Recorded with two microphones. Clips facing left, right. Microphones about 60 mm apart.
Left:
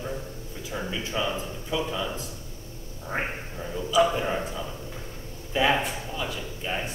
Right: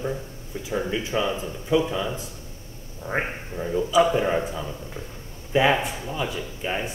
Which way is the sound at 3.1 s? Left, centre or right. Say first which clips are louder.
Right 3 dB; right.